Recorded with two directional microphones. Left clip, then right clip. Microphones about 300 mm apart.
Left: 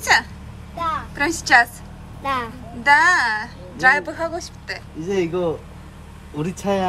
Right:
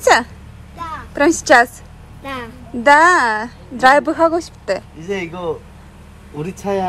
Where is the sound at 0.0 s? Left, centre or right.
Centre.